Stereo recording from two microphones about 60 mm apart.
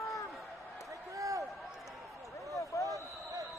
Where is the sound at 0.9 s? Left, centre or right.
Right.